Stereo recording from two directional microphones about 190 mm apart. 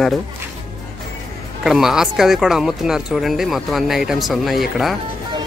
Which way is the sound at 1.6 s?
Centre (ahead or behind).